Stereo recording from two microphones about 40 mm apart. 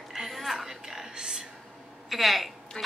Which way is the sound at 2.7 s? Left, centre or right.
Left.